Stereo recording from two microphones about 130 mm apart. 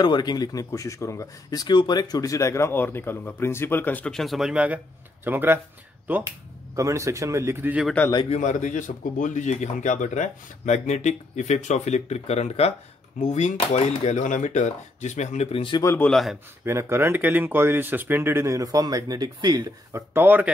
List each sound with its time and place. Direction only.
0.0 s speech: 35° left (ahead or behind); by 7.8 s 15° right (ahead or behind)
8.3 s a man's voice: 65° left (ahead or behind); by 15.8 s 45° left (ahead or behind)
16.0 s a man's voice: centre (ahead or behind)
16.6 s speech: 20° right (ahead or behind)
19.9 s speech: 15° right (ahead or behind)